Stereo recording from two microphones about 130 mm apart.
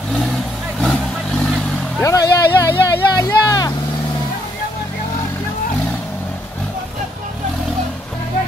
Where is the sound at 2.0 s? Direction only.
25° left (ahead or behind).